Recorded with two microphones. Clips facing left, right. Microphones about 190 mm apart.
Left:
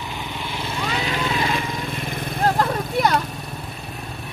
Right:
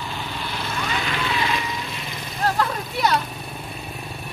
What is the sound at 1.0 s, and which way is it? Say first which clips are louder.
Vehicle: left 3 dB; 35° left (ahead or behind).